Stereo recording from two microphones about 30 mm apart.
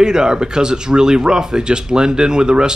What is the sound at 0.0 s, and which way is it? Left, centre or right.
Speech, right.